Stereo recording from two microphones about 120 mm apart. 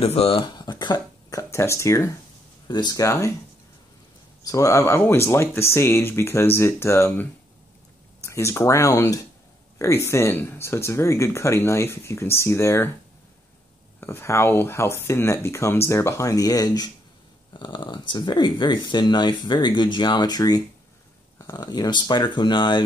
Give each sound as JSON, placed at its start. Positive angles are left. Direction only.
{"t": 0.0, "sound": "speech", "side_deg": 55}
{"t": 4.4, "sound": "speech", "side_deg": 30}
{"t": 13.9, "sound": "speech", "side_deg": 20}